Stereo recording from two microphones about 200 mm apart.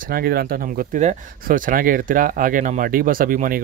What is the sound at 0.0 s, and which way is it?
Speech, 50° right (ahead or behind).